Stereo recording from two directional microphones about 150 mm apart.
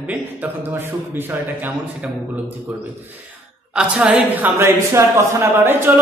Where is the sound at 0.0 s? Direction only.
10° right (ahead or behind).